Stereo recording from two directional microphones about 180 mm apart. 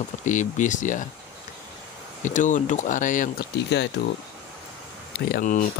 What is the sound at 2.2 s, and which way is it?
Speech, 45° left (ahead or behind).